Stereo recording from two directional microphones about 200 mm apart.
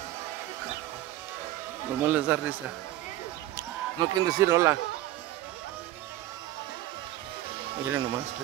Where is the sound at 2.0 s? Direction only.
10° right (ahead or behind).